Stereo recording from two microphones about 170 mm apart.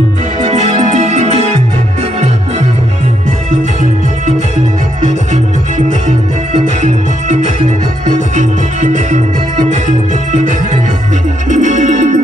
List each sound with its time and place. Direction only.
0.5 s music: 40° right (ahead or behind)
6.8 s music: 45° right (ahead or behind)
11.4 s music: 45° right (ahead or behind)